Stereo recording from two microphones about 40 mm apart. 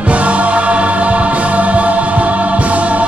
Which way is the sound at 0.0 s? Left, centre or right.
Right.